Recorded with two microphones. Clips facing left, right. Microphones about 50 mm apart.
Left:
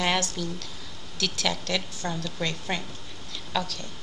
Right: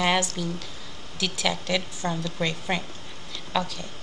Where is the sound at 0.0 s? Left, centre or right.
Centre.